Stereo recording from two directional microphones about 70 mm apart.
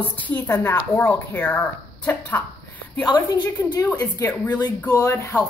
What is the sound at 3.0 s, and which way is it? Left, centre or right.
Speech, left.